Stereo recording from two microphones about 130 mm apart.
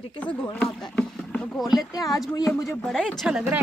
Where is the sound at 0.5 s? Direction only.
5° left (ahead or behind).